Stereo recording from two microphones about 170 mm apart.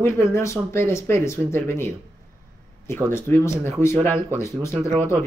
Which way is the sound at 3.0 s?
15° left (ahead or behind).